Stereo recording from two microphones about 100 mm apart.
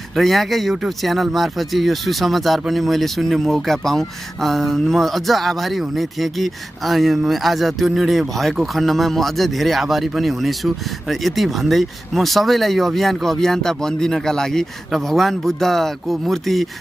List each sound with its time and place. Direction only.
0.1 s speech: centre (ahead or behind)